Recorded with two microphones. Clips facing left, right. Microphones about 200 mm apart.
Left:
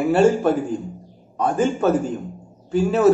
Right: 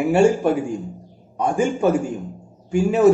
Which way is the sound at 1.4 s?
15° right (ahead or behind).